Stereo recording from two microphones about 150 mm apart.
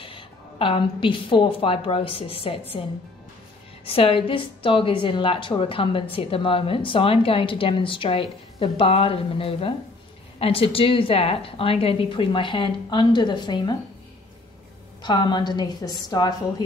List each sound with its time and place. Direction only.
0.0 s a woman's voice: 35° left (ahead or behind)
3.8 s a woman's voice: 40° left (ahead or behind)
15.0 s a woman's voice: 30° left (ahead or behind)